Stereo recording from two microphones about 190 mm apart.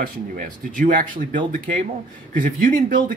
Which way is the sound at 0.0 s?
45° right (ahead or behind).